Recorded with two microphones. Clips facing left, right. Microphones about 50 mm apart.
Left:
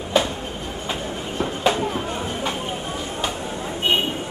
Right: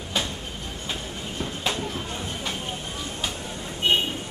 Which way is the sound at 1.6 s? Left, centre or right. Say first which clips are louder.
Left 9 dB; centre.